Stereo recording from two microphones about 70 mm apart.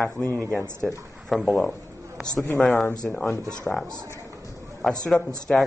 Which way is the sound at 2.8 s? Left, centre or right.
Centre.